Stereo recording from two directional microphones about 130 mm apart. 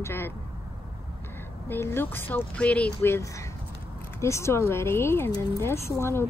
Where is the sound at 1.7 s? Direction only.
20° left (ahead or behind).